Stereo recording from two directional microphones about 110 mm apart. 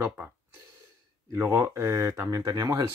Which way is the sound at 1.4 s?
25° right (ahead or behind).